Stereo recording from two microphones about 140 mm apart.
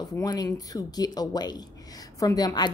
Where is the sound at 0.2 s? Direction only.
25° left (ahead or behind).